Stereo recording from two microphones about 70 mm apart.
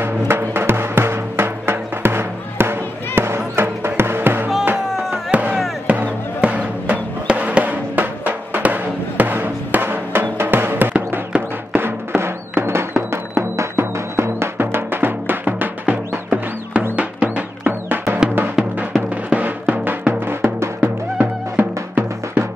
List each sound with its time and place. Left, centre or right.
0.0 s music: right
5.3 s chop: centre
5.9 s music: centre
18.6 s music: centre
19.0 s music: right
21.2 s music: right